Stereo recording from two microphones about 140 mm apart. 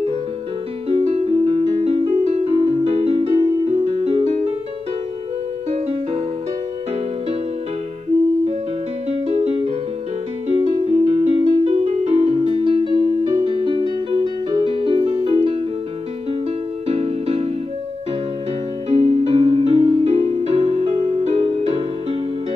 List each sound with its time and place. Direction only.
0.8 s music: 45° right (ahead or behind)
9.3 s music: 45° right (ahead or behind)
16.8 s music: 45° right (ahead or behind)
18.9 s music: 45° right (ahead or behind)